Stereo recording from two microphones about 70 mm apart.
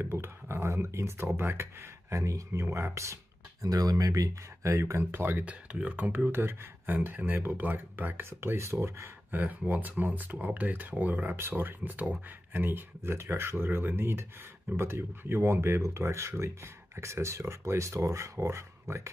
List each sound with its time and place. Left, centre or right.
0.0 s speech: right
3.6 s speech: right
4.6 s speech: right
5.1 s speech: right
5.4 s speech: centre; by 9.1 s right
9.3 s speech: right